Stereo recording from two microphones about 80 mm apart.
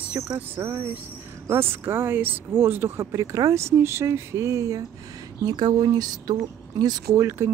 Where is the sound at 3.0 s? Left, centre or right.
Right.